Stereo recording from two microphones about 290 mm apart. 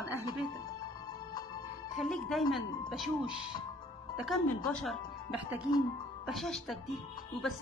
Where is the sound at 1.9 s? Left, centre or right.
Centre.